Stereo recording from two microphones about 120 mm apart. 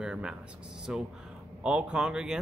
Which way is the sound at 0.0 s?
10° right (ahead or behind).